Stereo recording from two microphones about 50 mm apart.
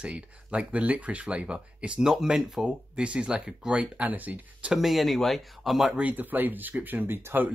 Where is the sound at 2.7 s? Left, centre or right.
Right.